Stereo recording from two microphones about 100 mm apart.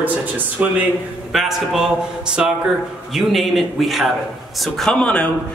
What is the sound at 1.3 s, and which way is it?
Speech, centre (ahead or behind).